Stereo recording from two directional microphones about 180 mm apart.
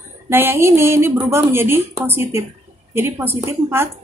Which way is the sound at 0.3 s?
10° right (ahead or behind).